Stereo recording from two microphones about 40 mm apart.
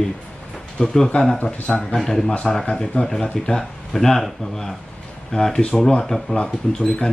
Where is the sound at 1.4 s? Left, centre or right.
Left.